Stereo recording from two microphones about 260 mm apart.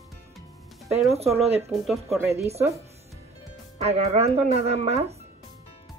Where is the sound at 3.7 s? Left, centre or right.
Right.